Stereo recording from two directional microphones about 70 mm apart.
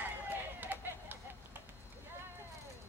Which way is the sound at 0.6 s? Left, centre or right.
Right.